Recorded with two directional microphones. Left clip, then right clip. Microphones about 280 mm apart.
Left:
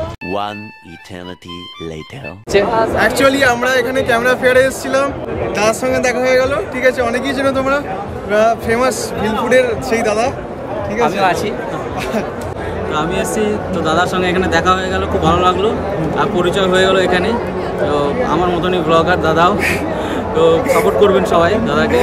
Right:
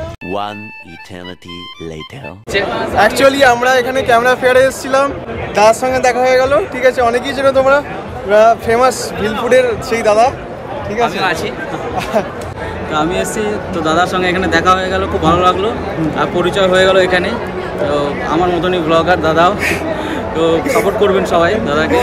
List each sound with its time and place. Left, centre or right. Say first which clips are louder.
2.5 s a man's voice: left 3 dB; left
3.0 s speech: right 6 dB; centre
11.0 s a man's voice: left 1 dB; left
12.0 s speech: right 5 dB; centre
12.9 s speech: right 2 dB; centre
20.0 s a sound: left 2 dB; centre
20.8 s speech: left 1 dB; centre